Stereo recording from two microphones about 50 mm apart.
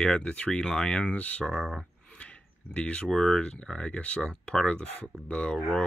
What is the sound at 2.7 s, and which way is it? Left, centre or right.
Speech, left.